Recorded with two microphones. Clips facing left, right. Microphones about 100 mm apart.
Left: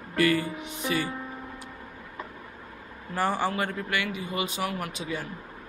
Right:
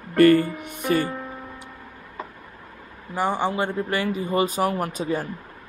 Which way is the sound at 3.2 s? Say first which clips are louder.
Right 3 dB; 20° right (ahead or behind).